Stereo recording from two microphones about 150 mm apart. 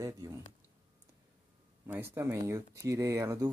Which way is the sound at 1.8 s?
15° right (ahead or behind).